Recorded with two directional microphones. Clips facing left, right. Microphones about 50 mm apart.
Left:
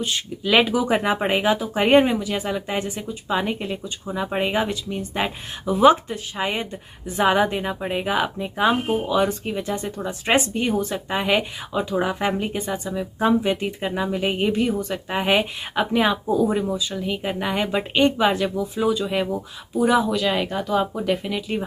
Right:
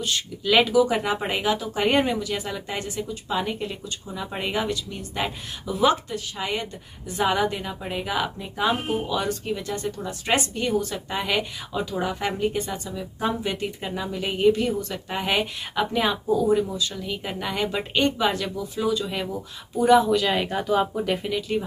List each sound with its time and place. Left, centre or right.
0.0 s speech: left
16.3 s speech: left
16.7 s speech: centre
19.8 s speech: centre